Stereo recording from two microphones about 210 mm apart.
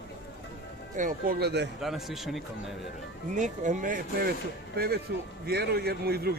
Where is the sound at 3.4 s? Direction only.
35° right (ahead or behind).